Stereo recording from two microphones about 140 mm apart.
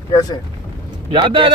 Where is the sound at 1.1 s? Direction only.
35° right (ahead or behind).